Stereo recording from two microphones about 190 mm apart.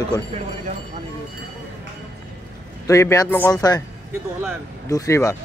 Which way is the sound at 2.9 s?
15° left (ahead or behind).